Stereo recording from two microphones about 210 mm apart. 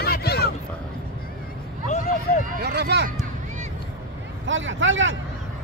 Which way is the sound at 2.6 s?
50° right (ahead or behind).